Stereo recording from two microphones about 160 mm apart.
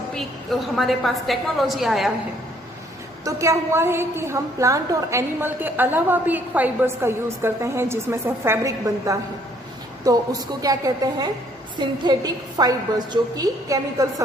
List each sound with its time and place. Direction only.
0.1 s a woman's voice: centre (ahead or behind)
3.3 s a woman's voice: 20° right (ahead or behind)